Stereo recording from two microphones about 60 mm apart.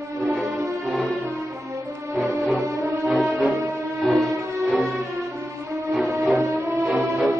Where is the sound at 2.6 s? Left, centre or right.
Right.